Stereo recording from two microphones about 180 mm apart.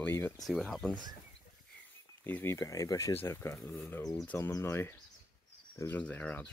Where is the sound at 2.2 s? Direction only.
10° left (ahead or behind).